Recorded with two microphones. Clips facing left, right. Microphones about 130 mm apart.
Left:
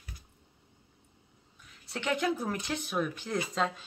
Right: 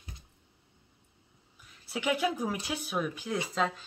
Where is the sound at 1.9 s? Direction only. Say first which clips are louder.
Right 1 dB; 10° right (ahead or behind).